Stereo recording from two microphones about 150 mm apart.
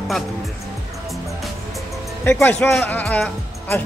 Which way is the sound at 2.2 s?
10° left (ahead or behind).